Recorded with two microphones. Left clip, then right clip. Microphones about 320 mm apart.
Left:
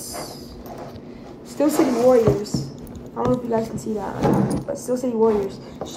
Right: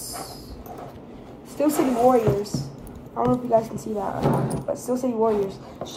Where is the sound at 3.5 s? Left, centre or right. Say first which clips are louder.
Right 2 dB; centre.